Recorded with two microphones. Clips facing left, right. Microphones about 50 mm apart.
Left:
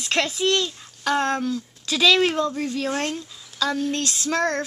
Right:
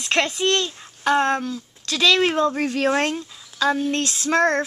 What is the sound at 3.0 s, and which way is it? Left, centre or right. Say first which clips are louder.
Speech: right 3 dB; right.